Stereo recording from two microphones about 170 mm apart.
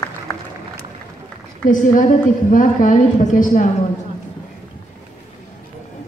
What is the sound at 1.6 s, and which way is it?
A woman's voice, 50° left (ahead or behind).